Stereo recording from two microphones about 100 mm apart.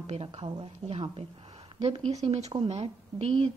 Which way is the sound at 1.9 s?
85° right.